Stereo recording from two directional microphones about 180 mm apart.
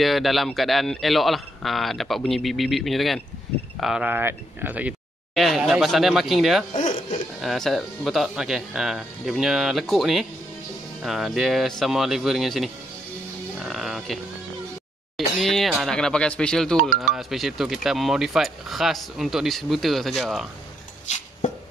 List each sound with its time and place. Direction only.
0.0 s speech: centre (ahead or behind)
6.7 s speech: 45° left (ahead or behind)
7.4 s speech: centre (ahead or behind)
13.6 s sheep: centre (ahead or behind)
15.1 s speech: centre (ahead or behind)